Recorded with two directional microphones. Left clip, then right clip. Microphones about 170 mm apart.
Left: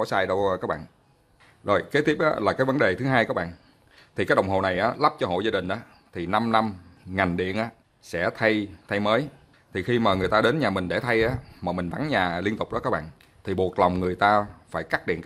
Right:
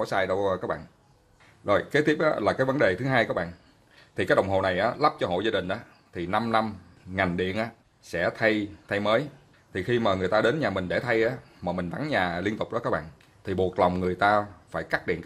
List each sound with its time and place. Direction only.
0.0 s speech: 30° left (ahead or behind)